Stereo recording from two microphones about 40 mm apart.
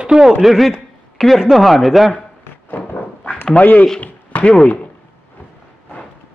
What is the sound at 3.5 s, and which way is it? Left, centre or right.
Speech, left.